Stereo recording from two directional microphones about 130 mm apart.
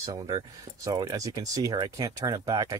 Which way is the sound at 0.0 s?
30° right (ahead or behind).